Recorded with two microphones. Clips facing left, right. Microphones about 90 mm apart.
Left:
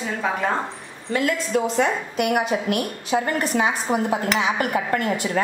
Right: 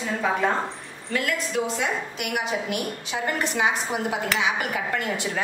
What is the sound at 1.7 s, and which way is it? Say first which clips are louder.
A woman's voice: left 6 dB; 45° left (ahead or behind).